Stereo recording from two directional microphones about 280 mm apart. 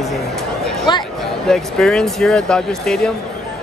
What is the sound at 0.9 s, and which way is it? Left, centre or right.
Speech, centre.